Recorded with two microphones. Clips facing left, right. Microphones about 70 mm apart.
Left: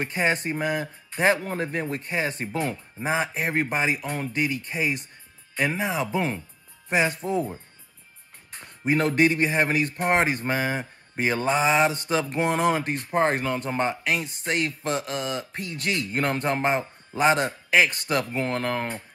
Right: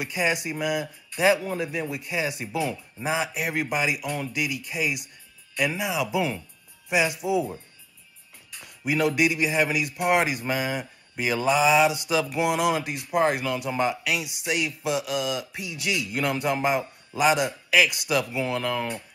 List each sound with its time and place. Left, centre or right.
0.0 s speech: left
8.5 s speech: left